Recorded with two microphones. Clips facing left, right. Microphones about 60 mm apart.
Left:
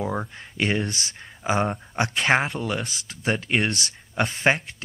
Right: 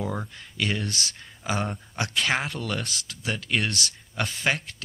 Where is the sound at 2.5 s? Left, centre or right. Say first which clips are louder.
Left 3 dB; centre.